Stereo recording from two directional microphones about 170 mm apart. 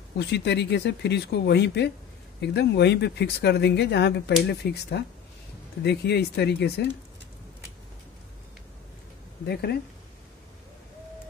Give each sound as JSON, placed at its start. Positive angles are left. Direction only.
{"t": 0.2, "sound": "speech", "side_deg": 80}
{"t": 9.5, "sound": "speech", "side_deg": 70}